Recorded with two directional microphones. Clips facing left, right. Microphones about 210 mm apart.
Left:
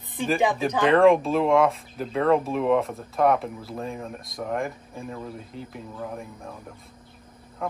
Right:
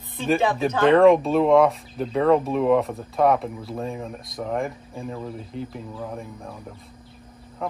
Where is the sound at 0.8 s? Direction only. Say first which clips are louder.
Right 3 dB; centre (ahead or behind).